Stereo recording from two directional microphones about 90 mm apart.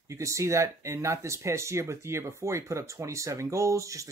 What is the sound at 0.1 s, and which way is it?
Speech, 35° right (ahead or behind).